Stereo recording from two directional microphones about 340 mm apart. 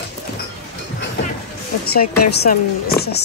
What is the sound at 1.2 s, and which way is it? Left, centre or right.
Vehicle, left.